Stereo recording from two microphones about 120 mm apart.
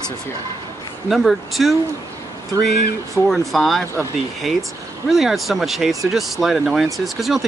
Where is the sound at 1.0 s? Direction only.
Centre (ahead or behind).